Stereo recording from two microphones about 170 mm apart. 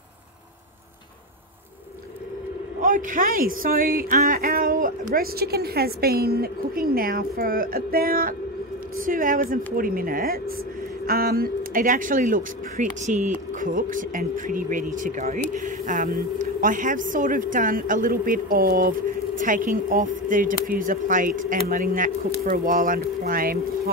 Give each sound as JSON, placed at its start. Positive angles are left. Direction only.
{"t": 2.8, "sound": "a man's voice", "side_deg": -50}